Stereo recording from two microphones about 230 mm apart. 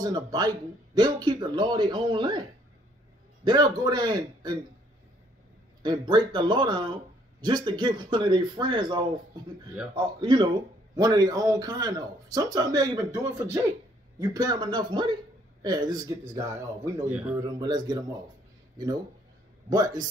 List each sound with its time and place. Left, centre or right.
0.0 s speech: centre
3.4 s speech: centre
5.8 s speech: centre
17.1 s speech: centre
17.6 s speech: centre
19.7 s speech: centre